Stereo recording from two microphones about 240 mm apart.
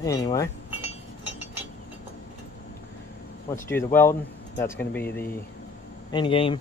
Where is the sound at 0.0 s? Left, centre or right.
Centre.